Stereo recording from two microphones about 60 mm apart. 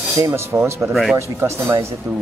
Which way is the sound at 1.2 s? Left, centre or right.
Right.